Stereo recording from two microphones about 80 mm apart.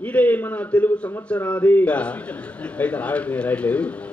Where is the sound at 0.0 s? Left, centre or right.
Centre.